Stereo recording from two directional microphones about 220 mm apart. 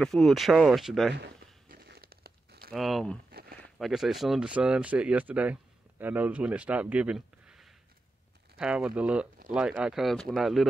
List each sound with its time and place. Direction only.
0.0 s speech: centre (ahead or behind)
1.1 s crumpling: 50° right (ahead or behind)
2.7 s speech: centre (ahead or behind)
3.3 s a sound: 45° right (ahead or behind)
3.7 s speech: centre (ahead or behind)